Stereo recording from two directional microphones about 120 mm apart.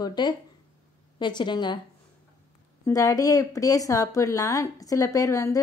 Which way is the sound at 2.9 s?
30° left (ahead or behind).